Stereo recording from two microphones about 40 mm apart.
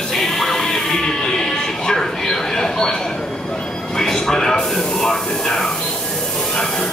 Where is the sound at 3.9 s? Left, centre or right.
Centre.